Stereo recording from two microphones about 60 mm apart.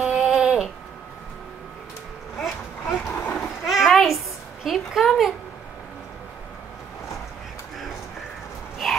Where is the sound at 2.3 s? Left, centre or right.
Centre.